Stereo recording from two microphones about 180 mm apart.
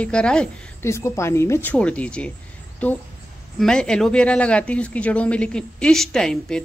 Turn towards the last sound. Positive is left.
turn(degrees=5)  # may be behind; listen again after turning